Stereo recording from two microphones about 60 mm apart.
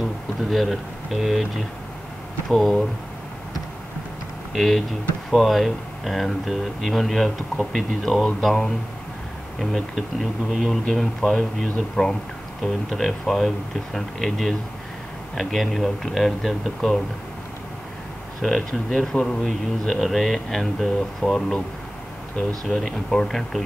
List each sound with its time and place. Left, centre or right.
0.4 s speech: centre
4.6 s speech: centre
18.4 s speech: centre
22.7 s speech: centre